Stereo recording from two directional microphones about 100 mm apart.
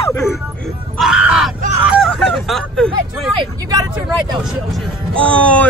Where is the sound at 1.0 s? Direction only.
5° right (ahead or behind).